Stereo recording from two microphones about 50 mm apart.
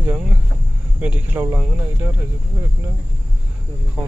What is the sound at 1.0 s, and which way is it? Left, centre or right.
Speech, right.